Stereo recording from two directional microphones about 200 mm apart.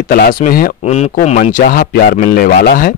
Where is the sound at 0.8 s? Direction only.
35° left (ahead or behind).